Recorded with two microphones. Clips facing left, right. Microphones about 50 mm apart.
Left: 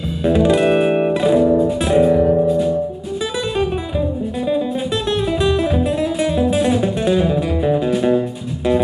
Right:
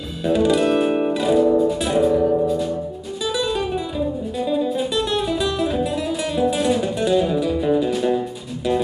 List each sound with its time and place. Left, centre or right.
0.2 s music: left
5.4 s music: left